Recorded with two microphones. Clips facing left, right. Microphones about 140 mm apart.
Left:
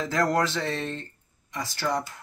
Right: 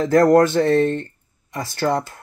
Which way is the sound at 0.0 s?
55° right (ahead or behind).